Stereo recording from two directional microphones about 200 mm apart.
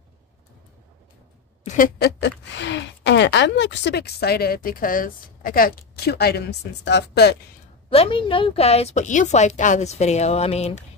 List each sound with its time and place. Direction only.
1.6 s speech: 40° left (ahead or behind); by 7.3 s 55° left (ahead or behind)
7.9 s a woman's voice: 25° left (ahead or behind)